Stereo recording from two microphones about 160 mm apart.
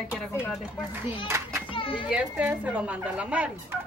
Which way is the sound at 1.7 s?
35° left (ahead or behind).